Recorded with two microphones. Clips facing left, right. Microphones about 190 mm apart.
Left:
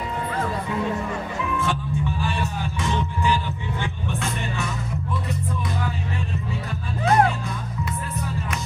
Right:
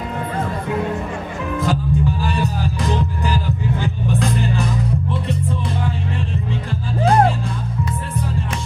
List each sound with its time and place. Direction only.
1.6 s music: 35° right (ahead or behind)